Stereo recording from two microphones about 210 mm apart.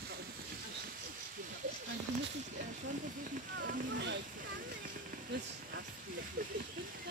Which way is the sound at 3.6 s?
55° right (ahead or behind).